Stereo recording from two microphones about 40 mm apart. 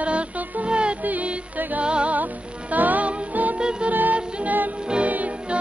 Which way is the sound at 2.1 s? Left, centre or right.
Right.